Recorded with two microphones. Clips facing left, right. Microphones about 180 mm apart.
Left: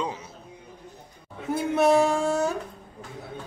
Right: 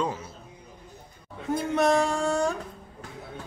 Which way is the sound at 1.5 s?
5° left (ahead or behind).